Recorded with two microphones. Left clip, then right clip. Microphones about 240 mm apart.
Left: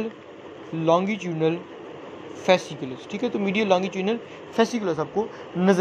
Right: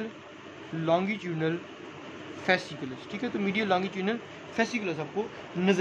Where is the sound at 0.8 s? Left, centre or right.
Centre.